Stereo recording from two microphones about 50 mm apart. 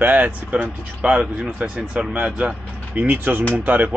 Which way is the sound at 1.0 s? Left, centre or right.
Right.